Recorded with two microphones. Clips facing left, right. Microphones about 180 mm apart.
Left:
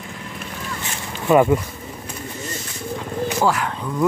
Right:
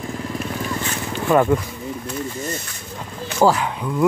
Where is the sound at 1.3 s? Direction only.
5° left (ahead or behind).